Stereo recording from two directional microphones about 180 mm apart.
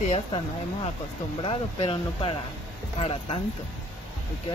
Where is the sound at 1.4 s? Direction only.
30° left (ahead or behind).